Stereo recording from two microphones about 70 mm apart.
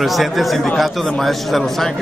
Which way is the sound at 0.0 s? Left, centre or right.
Centre.